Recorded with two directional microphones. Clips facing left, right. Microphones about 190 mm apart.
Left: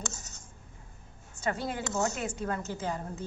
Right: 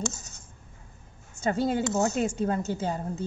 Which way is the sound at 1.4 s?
30° right (ahead or behind).